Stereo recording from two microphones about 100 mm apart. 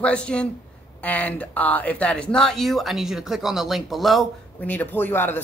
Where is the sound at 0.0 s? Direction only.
10° left (ahead or behind).